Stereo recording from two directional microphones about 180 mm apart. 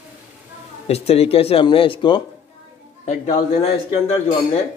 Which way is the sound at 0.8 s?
35° left (ahead or behind).